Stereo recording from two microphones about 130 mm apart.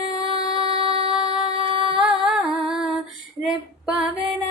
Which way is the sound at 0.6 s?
45° right (ahead or behind).